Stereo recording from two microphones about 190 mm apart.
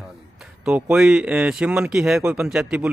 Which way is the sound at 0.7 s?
5° right (ahead or behind).